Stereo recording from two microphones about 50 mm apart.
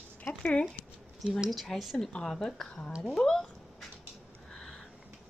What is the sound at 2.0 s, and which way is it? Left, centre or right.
Speech, centre.